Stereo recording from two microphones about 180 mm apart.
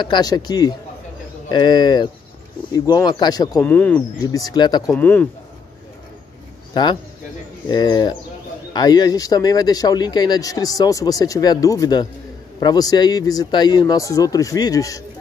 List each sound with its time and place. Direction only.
0.0 s a man's voice: 25° left (ahead or behind)
3.6 s a man's voice: 10° left (ahead or behind)
4.9 s speech: 10° left (ahead or behind)
6.7 s a man's voice: 25° left (ahead or behind)